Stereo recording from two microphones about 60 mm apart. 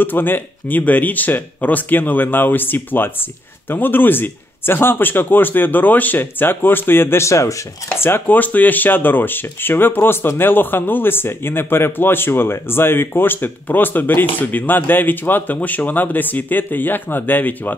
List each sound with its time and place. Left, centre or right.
0.0 s speech: left
7.2 s speech: left
7.9 s speech: left
8.4 s speech: left